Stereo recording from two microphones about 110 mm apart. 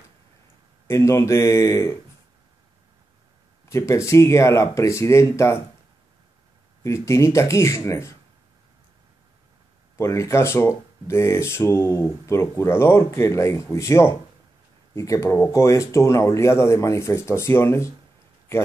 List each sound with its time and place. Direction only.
0.8 s speech: 25° left (ahead or behind)
3.6 s speech: 25° left (ahead or behind)
6.8 s speech: 25° left (ahead or behind)
9.9 s speech: 25° left (ahead or behind)